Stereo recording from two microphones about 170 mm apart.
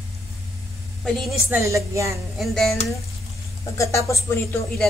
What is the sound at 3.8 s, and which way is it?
Speech, 20° left (ahead or behind).